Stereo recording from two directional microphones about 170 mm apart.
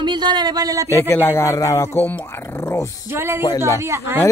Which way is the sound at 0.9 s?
15° left (ahead or behind).